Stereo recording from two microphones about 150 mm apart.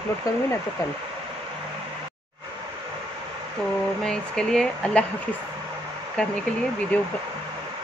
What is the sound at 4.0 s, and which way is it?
Speech, 5° left (ahead or behind).